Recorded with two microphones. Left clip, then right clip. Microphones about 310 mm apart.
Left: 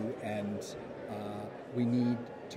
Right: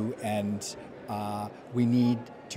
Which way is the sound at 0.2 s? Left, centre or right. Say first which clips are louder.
Right 5 dB; right.